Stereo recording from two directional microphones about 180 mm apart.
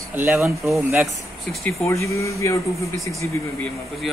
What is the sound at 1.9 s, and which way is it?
Speech, 15° left (ahead or behind).